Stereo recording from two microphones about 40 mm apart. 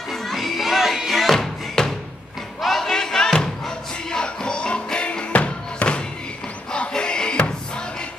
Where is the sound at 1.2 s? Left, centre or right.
Centre.